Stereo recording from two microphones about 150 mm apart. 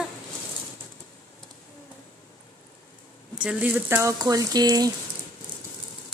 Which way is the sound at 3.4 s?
10° right (ahead or behind).